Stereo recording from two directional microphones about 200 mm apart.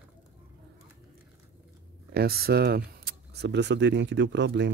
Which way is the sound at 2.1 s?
50° right (ahead or behind).